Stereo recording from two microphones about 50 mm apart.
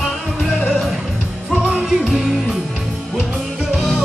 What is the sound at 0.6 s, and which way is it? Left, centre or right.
Music, left.